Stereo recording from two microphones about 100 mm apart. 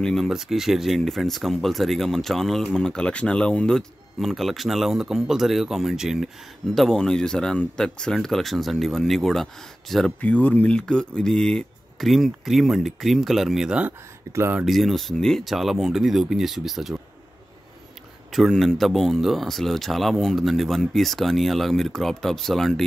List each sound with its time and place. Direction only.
0.0 s speech: centre (ahead or behind)
10.2 s speech: 15° left (ahead or behind); by 13.9 s 10° right (ahead or behind)
14.3 s speech: 25° right (ahead or behind)
14.6 s speech: centre (ahead or behind)
18.3 s speech: centre (ahead or behind)